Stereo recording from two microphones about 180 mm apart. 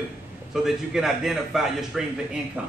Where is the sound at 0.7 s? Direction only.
Centre (ahead or behind).